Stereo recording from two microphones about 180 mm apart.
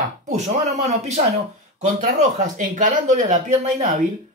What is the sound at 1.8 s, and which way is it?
Speech, 45° right (ahead or behind).